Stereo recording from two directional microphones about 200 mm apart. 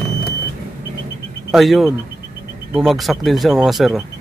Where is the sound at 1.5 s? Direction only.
Centre (ahead or behind).